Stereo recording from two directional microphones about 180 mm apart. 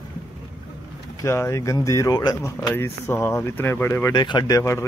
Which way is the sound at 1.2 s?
15° left (ahead or behind).